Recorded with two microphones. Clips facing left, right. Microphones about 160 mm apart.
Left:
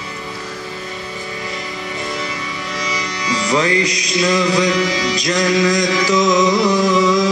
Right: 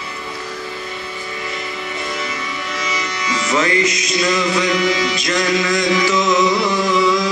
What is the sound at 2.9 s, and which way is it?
Music, 35° left (ahead or behind).